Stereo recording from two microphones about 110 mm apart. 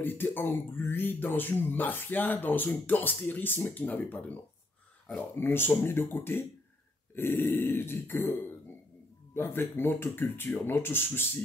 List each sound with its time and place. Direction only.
0.0 s speech: 20° left (ahead or behind)